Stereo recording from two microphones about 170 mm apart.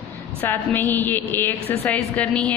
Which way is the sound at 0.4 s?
10° left (ahead or behind).